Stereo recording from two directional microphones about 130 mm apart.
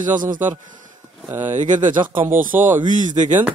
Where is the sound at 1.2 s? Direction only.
15° right (ahead or behind).